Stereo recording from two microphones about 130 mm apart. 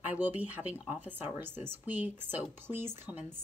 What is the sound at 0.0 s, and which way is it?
A woman's voice, 10° right (ahead or behind).